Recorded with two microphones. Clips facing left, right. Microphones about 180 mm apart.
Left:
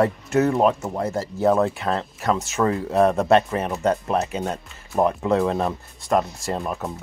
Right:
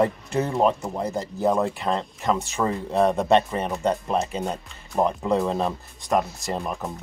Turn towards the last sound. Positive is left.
turn(degrees=0)  # may be behind; listen again after turning